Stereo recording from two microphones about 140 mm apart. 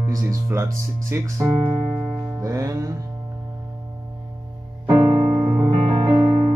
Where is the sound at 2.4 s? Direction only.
25° right (ahead or behind).